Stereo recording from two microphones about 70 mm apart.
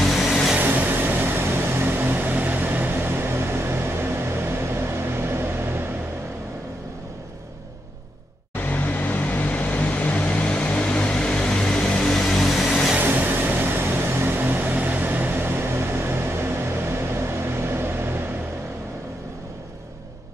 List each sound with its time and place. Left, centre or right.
0.0 s vehicle: centre
0.6 s vehicle: right
8.5 s vehicle: left; by 12.7 s centre
13.0 s vehicle: right